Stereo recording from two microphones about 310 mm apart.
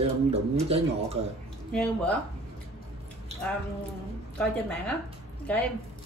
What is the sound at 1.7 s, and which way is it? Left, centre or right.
Speech, centre.